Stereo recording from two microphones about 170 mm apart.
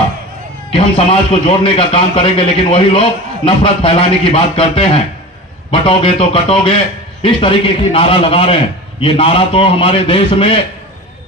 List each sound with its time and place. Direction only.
0.7 s a man's voice: 35° left (ahead or behind)